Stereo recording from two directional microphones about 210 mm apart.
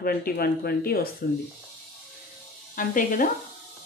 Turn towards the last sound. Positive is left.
turn(degrees=40)  # may be behind; listen again after turning